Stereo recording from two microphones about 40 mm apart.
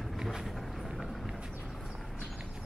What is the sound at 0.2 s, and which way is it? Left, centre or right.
Vehicle, centre.